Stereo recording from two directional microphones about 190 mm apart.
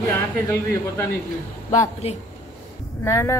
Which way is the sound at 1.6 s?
40° left (ahead or behind).